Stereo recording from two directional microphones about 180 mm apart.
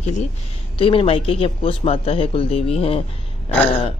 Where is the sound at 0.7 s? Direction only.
30° left (ahead or behind).